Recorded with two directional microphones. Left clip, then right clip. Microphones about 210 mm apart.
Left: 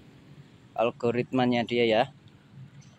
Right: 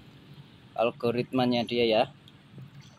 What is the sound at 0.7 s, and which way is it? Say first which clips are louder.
Speech: left 1 dB; 20° left (ahead or behind).